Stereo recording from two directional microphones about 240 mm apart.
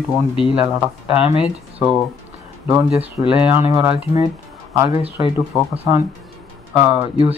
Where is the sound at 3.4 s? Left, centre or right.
Centre.